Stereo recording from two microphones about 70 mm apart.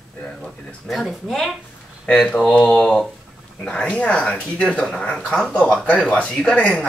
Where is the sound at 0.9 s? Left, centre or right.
Centre.